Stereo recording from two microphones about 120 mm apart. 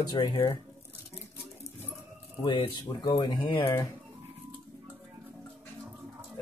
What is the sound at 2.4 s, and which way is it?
Speech, 45° left (ahead or behind).